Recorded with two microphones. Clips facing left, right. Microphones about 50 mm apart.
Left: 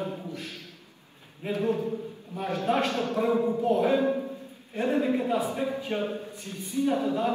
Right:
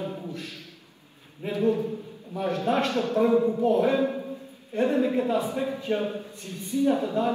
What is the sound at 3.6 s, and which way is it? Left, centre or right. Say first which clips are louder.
Speech: right 2 dB; right.